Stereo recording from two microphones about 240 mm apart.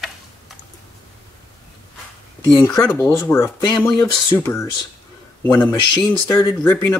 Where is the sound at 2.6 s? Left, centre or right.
Centre.